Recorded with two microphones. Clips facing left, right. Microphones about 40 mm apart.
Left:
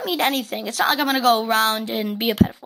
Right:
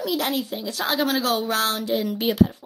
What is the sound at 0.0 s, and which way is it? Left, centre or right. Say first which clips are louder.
Speech: left 3 dB; left.